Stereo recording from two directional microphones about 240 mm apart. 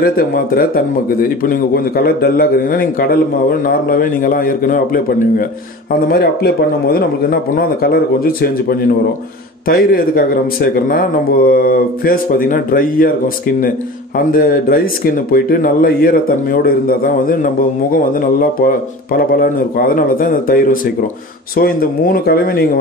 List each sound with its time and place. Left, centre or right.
0.0 s a man's voice: left
6.0 s a man's voice: left
14.1 s a man's voice: left
19.1 s a man's voice: left